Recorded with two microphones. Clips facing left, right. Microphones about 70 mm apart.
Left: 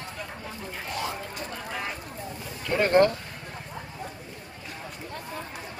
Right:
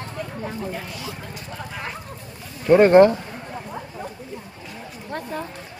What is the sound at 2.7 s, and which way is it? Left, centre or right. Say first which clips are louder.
Speech: right 9 dB; right.